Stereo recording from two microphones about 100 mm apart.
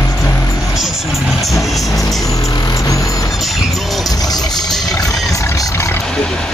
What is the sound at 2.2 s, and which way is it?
Vehicle, 35° left (ahead or behind).